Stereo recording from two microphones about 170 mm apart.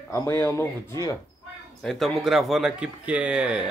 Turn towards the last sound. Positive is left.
turn(degrees=-5)  # may be behind; listen again after turning